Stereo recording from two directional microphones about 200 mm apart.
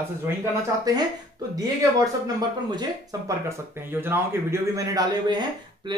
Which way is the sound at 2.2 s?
20° right (ahead or behind).